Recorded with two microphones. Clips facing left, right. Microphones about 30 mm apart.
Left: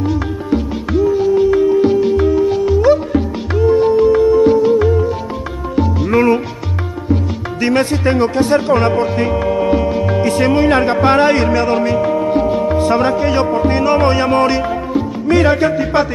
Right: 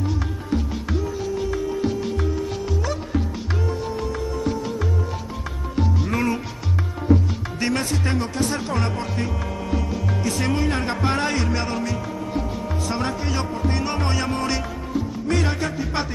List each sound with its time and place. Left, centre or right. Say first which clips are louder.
1.1 s music: left 13 dB; left
7.7 s speech: left 12 dB; left
9.0 s music: left 12 dB; left
10.4 s speech: left 12 dB; left
11.7 s music: left 13 dB; left
12.9 s music: left 10 dB; left
13.3 s speech: left 11 dB; left
14.5 s music: left 10 dB; left
15.2 s music: left 12 dB; left
15.5 s speech: left 12 dB; left